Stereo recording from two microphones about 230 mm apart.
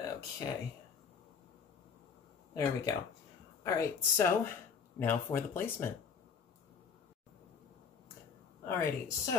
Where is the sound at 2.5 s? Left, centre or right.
Centre.